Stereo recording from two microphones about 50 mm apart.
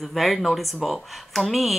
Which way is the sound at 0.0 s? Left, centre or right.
Centre.